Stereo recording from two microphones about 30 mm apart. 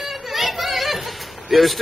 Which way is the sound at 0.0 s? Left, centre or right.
Centre.